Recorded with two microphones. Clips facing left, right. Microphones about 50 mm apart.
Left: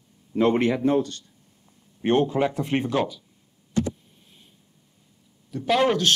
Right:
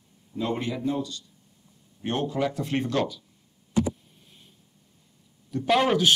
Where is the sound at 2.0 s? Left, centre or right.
Left; by 3.2 s centre.